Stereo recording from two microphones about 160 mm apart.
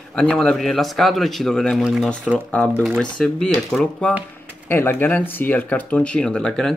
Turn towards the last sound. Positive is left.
turn(degrees=5)  # may be behind; listen again after turning